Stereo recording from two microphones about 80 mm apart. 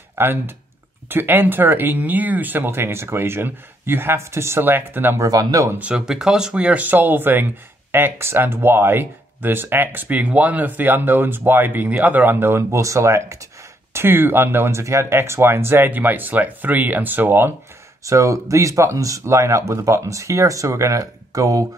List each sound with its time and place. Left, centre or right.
0.1 s speech: right
5.2 s speech: right
5.7 s speech: centre; by 13.5 s right
13.9 s speech: right
18.0 s speech: right